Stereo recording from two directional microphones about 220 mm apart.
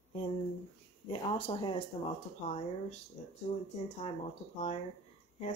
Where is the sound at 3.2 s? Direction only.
30° left (ahead or behind).